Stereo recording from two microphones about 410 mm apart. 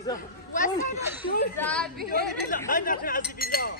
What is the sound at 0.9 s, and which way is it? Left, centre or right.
Speech, centre.